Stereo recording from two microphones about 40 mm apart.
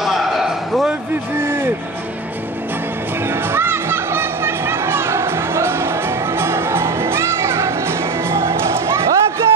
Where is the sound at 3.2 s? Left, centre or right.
Right.